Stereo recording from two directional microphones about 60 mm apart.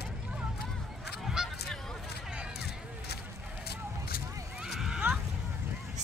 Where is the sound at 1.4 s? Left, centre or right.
Centre.